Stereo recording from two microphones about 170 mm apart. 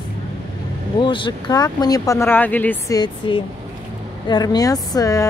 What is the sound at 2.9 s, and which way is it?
Speech, 25° left (ahead or behind).